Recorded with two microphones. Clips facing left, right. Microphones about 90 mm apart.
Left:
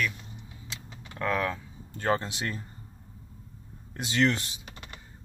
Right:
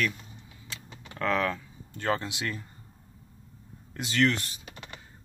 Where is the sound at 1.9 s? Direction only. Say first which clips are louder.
Left 2 dB; 30° left (ahead or behind).